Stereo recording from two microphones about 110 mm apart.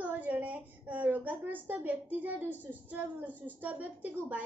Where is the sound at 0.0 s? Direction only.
15° right (ahead or behind).